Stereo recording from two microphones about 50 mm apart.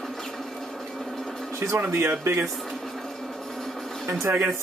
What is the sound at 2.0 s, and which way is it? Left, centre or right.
Speech, right.